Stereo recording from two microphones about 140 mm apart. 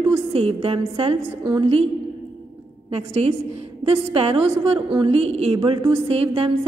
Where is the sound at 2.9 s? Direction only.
45° right (ahead or behind).